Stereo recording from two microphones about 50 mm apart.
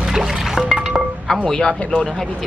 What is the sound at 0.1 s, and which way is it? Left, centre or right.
Music, centre.